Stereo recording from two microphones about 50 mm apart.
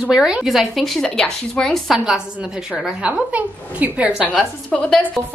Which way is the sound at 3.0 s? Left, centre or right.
Right.